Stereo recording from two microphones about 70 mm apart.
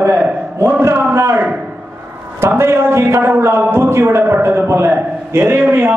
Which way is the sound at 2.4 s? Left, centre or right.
Right.